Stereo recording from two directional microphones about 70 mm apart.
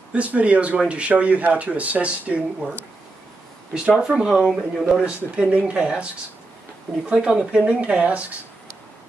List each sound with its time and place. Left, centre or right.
0.1 s speech: centre
3.7 s speech: centre
7.1 s speech: centre